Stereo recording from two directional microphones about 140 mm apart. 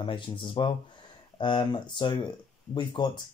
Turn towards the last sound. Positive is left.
turn(degrees=35)  # may be behind; listen again after turning